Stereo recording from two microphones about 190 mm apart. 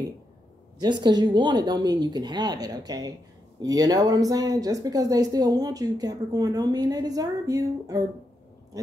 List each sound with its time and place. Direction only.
0.7 s speech: 25° right (ahead or behind)